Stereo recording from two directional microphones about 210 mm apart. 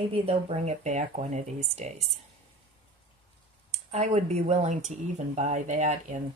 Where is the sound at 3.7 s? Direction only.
30° right (ahead or behind).